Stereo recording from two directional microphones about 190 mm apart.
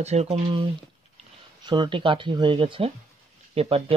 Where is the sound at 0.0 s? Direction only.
35° right (ahead or behind).